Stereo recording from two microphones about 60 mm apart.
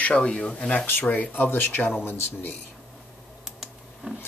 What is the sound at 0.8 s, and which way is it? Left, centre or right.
Speech, left.